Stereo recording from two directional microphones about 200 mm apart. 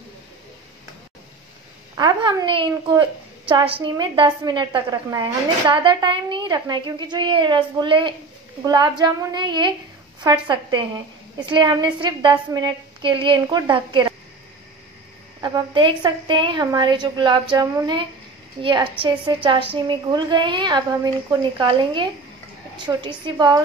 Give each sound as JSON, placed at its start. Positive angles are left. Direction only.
{"t": 2.0, "sound": "a woman's voice", "side_deg": -20}
{"t": 15.4, "sound": "a woman's voice", "side_deg": -20}